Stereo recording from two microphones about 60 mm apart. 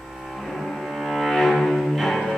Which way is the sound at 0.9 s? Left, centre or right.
Centre.